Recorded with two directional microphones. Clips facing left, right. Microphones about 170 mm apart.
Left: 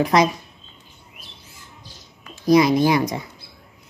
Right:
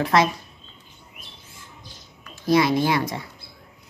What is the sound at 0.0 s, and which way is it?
Speech, 15° left (ahead or behind).